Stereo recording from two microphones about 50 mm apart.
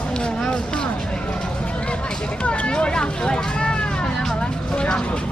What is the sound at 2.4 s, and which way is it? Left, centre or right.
Vehicle, left.